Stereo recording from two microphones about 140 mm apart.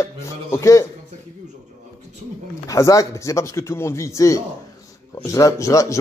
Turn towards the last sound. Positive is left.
turn(degrees=20)  # may be behind; listen again after turning